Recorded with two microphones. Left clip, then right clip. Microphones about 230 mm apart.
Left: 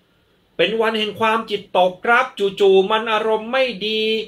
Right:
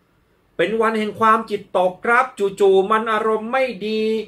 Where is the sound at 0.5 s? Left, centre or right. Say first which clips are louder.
Left 1 dB; centre.